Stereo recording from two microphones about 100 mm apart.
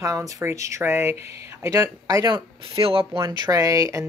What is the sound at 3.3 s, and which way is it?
Speech, 40° right (ahead or behind).